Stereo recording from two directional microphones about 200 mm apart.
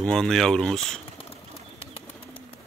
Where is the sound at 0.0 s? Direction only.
5° left (ahead or behind).